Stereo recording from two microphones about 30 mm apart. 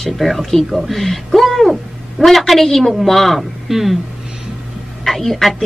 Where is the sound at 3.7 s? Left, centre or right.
Centre.